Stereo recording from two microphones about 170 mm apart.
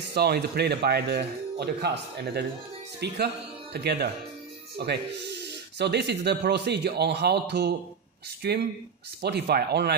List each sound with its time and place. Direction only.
0.1 s speech: 70° right (ahead or behind)